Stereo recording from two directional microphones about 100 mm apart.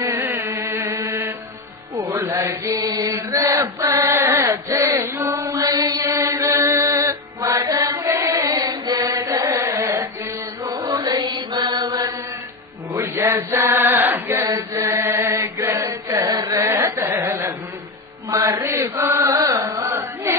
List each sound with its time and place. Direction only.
0.1 s chant: 25° right (ahead or behind)
5.7 s mantra: 45° right (ahead or behind)
6.2 s chant: 30° right (ahead or behind)
6.6 s music: 30° right (ahead or behind)
7.6 s chant: 35° right (ahead or behind)
9.3 s carnatic music: 35° right (ahead or behind)
10.6 s mantra: 40° right (ahead or behind)
12.9 s chant: 25° right (ahead or behind)
16.3 s chant: 35° right (ahead or behind)
18.4 s mantra: 25° right (ahead or behind)
18.8 s chant: 30° right (ahead or behind)